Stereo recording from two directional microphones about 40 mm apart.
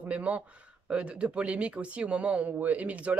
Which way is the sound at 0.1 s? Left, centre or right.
Right.